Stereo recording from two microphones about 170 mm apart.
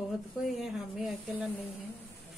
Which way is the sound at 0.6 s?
Centre (ahead or behind).